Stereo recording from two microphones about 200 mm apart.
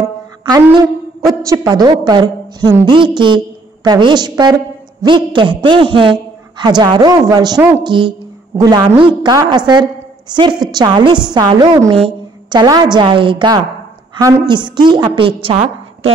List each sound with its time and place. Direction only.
1.4 s a woman's voice: 15° right (ahead or behind)